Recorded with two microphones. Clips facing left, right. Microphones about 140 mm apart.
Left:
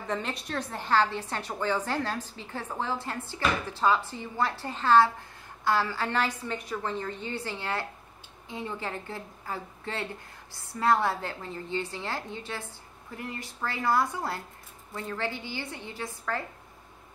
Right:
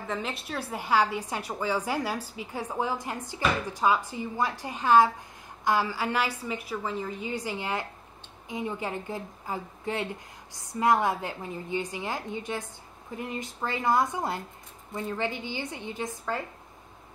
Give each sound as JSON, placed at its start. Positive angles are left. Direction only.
{"t": 0.0, "sound": "a woman's voice", "side_deg": 0}